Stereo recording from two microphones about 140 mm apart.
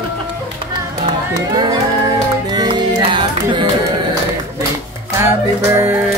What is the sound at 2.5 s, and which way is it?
Music, 30° right (ahead or behind).